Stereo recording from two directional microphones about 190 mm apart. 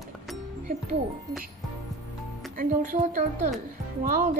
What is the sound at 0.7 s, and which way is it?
Speech, 40° right (ahead or behind).